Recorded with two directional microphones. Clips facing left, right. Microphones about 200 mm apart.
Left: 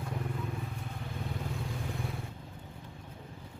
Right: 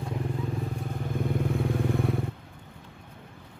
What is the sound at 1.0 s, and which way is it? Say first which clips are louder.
Vehicle: right 11 dB; 55° right (ahead or behind).